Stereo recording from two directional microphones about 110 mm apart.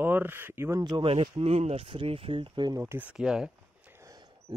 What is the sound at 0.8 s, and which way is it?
Speech, 35° right (ahead or behind).